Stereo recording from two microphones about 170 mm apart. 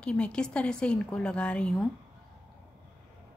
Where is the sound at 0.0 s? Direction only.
5° left (ahead or behind).